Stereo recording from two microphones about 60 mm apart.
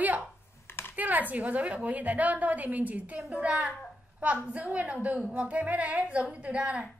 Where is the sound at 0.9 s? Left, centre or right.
Right.